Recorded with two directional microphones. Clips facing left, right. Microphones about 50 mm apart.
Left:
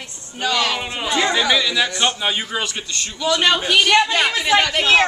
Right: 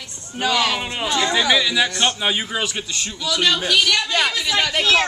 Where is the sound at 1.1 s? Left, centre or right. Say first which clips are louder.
Left 2 dB; centre.